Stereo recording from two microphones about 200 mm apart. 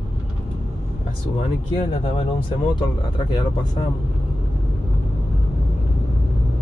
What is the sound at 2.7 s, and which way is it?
Speech, 25° left (ahead or behind).